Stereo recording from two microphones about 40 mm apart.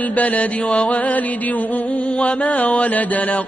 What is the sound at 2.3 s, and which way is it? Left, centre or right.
Mantra, left.